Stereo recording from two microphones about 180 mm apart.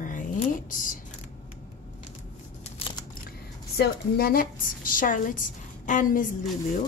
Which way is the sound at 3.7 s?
60° left (ahead or behind).